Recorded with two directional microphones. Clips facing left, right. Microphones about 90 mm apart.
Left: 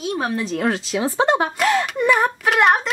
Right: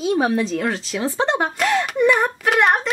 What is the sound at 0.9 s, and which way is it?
A woman's voice, 10° left (ahead or behind).